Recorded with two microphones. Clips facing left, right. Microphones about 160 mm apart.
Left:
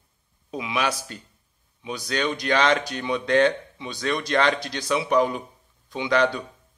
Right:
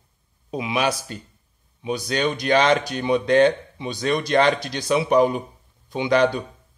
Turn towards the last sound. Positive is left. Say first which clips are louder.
# right 3 dB
turn(degrees=-15)  # may be behind; listen again after turning